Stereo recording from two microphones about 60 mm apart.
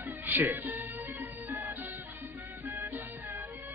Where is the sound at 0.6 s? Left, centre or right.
Right.